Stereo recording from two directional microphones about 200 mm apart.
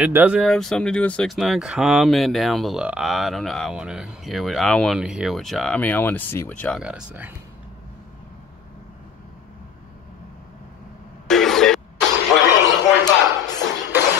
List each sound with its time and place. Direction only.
0.0 s speech: 10° right (ahead or behind); by 6.8 s 10° left (ahead or behind)
6.8 s speech: 5° right (ahead or behind)
11.2 s cough: centre (ahead or behind)
12.3 s a sound: 20° left (ahead or behind)